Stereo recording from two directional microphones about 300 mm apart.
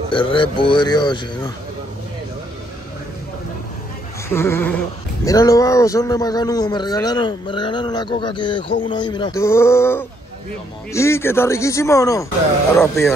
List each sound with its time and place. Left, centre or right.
0.1 s speech: centre
4.3 s speech: centre